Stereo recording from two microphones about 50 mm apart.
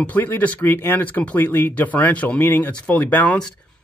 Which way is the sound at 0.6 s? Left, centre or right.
Left.